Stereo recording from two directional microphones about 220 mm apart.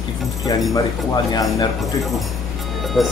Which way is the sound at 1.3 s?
15° left (ahead or behind).